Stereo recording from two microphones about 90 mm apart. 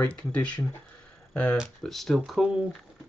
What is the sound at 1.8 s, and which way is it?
Speech, centre (ahead or behind).